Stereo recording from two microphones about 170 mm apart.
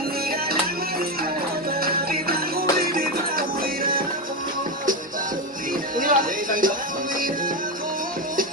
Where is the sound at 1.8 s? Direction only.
60° right (ahead or behind).